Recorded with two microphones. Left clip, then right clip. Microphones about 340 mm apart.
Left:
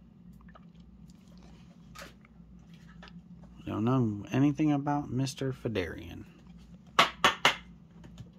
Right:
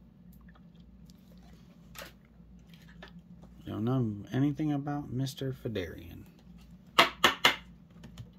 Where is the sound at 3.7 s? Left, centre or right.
Centre.